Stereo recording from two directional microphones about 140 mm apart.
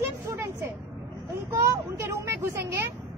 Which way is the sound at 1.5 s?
20° right (ahead or behind).